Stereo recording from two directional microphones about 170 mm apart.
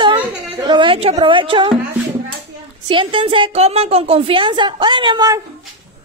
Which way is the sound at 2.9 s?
30° right (ahead or behind).